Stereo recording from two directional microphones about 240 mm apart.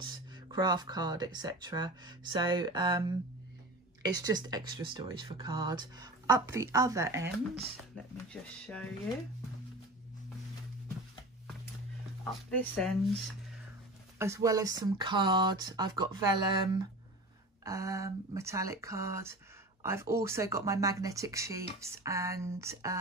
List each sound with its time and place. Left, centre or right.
0.0 s speech: centre
8.3 s speech: centre
12.4 s speech: centre
14.1 s speech: centre